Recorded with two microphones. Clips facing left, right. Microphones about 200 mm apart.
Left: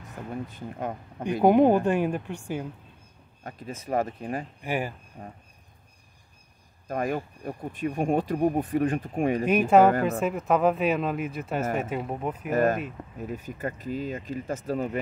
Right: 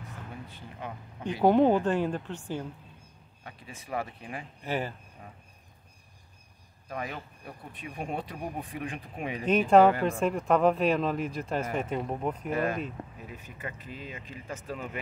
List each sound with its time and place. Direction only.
0.5 s speech: 45° left (ahead or behind)
1.4 s a woman's voice: 10° left (ahead or behind)
3.4 s speech: 45° left (ahead or behind)
4.6 s a woman's voice: 10° left (ahead or behind)
5.2 s speech: 35° left (ahead or behind)
6.9 s speech: 45° left (ahead or behind)
9.5 s a woman's voice: 10° left (ahead or behind)
12.4 s speech: 45° left (ahead or behind)